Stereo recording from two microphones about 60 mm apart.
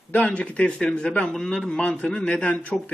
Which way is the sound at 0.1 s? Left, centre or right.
Left.